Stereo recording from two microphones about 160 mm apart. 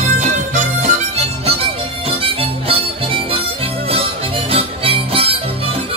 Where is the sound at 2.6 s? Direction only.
35° right (ahead or behind).